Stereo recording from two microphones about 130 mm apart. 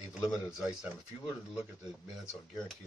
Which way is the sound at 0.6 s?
5° right (ahead or behind).